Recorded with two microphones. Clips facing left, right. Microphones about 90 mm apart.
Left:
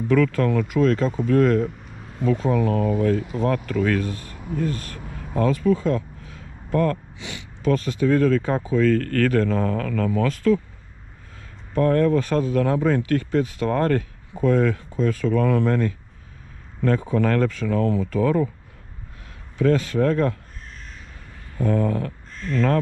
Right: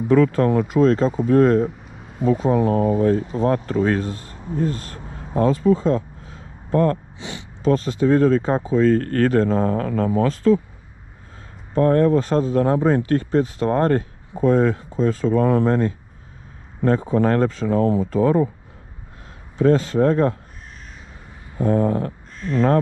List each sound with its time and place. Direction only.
0.1 s speech: 25° right (ahead or behind)
1.7 s a sound: centre (ahead or behind)
2.5 s speech: 30° right (ahead or behind)
11.7 s speech: 25° right (ahead or behind)
19.6 s speech: 25° right (ahead or behind)
21.5 s speech: 25° right (ahead or behind)